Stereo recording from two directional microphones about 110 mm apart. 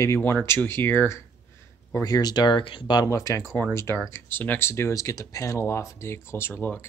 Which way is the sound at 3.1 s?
30° left (ahead or behind).